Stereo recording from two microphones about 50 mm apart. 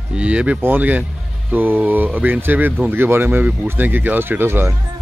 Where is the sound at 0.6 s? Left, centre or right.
Right.